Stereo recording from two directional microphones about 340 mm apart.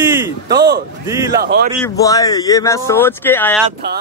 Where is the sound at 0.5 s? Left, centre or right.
Right.